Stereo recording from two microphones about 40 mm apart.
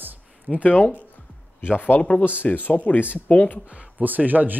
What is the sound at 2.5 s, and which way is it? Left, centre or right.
Speech, left.